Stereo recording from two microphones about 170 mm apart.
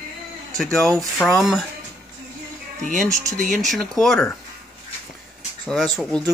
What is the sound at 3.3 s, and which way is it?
Speech, 50° right (ahead or behind).